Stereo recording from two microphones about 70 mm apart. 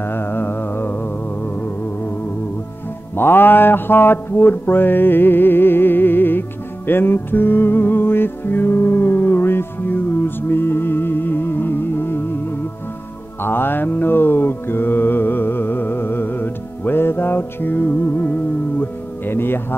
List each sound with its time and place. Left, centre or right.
0.0 s music: left
3.2 s mantra: left
6.9 s music: left
13.4 s mantra: left